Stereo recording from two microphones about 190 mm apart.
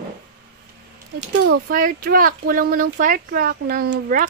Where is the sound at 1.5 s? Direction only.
50° right (ahead or behind).